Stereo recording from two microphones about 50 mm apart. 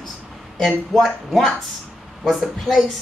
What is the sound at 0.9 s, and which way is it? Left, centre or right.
Speech, centre.